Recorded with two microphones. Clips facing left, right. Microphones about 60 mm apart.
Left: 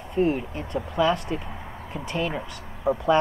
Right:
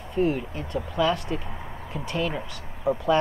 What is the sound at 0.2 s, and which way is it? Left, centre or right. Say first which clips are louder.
Speech: left 1 dB; centre.